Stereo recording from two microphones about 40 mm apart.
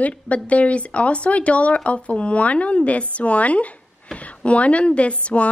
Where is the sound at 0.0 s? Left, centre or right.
Left.